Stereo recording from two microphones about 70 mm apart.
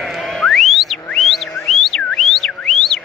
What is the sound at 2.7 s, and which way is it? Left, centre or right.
Music, centre.